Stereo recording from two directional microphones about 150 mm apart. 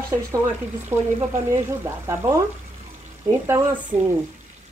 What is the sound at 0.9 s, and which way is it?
A woman's voice, 20° right (ahead or behind).